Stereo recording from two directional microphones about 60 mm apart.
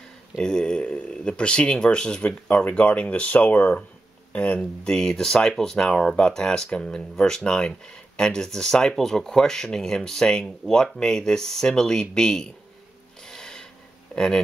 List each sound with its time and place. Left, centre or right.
0.4 s speech: centre
4.8 s speech: centre
13.3 s a sound: centre
14.1 s speech: centre